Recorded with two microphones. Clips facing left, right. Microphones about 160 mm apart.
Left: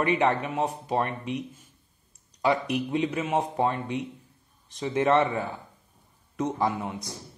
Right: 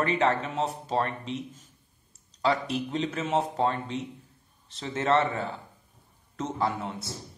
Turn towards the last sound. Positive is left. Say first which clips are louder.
# left 2 dB
turn(degrees=15)  # may be behind; listen again after turning